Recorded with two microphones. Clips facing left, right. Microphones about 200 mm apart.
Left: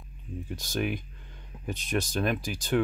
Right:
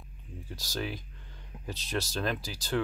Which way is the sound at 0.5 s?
20° left (ahead or behind).